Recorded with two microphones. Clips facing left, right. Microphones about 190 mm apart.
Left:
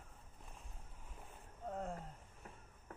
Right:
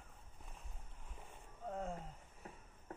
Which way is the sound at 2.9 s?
25° right (ahead or behind).